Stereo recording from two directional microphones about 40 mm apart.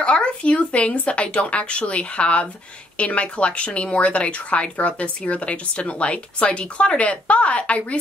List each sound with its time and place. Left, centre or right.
0.0 s speech: left